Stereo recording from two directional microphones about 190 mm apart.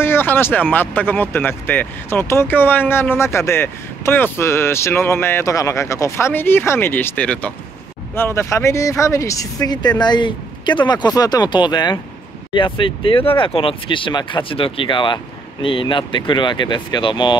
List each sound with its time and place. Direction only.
0.0 s speech: 10° left (ahead or behind)